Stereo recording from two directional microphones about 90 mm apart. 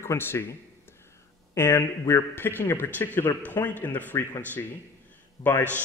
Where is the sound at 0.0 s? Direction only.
30° left (ahead or behind).